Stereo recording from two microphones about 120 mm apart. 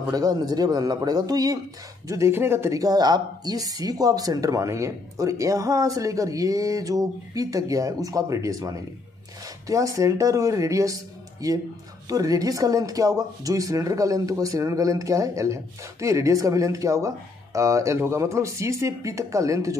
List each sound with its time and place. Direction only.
0.1 s speech: 30° right (ahead or behind)